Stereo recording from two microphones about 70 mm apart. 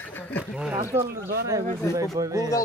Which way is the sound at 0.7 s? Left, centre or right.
Right.